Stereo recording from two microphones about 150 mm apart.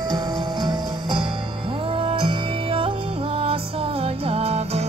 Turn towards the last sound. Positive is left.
turn(degrees=-45)  # may be behind; listen again after turning